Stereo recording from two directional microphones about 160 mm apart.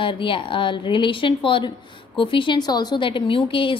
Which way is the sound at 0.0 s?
30° left (ahead or behind).